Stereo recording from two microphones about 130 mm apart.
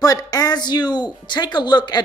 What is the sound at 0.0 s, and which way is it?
Speech, 30° left (ahead or behind).